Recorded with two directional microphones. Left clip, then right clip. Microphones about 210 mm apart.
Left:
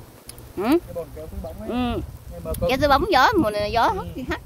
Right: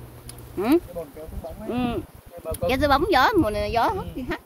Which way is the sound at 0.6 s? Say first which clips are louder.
Even; 10° left (ahead or behind).